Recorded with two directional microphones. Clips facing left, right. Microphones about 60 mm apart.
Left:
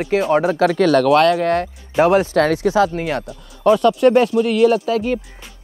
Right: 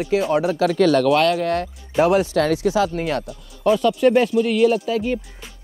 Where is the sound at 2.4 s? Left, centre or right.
Left.